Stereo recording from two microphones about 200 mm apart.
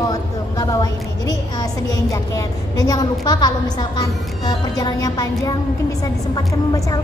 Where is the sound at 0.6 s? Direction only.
20° left (ahead or behind).